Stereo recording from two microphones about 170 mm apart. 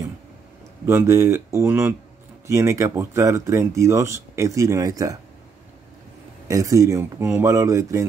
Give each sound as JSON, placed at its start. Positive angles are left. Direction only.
{"t": 0.8, "sound": "speech", "side_deg": -15}
{"t": 6.4, "sound": "speech", "side_deg": -20}